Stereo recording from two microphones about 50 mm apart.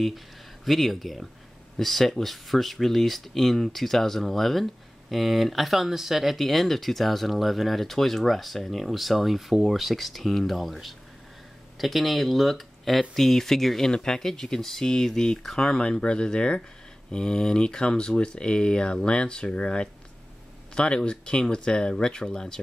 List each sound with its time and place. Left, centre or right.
0.7 s speech: centre